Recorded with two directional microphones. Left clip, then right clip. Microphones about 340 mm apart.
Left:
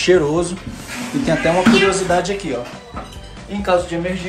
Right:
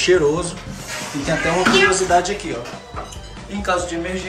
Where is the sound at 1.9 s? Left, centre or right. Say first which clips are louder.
Right 1 dB; centre.